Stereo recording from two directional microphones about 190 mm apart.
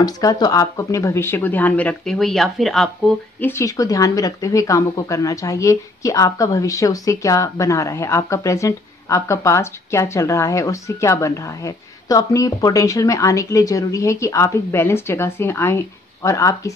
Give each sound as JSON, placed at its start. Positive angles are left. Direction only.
{"t": 0.0, "sound": "speech", "side_deg": 20}
{"t": 3.3, "sound": "speech", "side_deg": 10}